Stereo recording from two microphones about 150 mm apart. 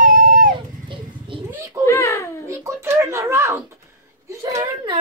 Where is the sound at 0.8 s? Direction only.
35° right (ahead or behind).